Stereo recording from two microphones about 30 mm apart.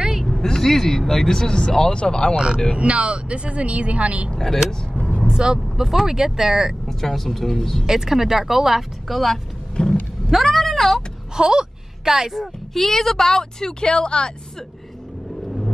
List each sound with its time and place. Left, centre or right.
0.4 s speech: centre
2.3 s speech: right
2.8 s speech: right
5.2 s vehicle: right
6.0 s a woman's voice: centre
6.9 s speech: centre
7.8 s a woman's voice: centre
9.8 s roaring cats: left
10.3 s speech: centre
11.3 s a sound: right
12.7 s speech: centre
13.8 s speech: left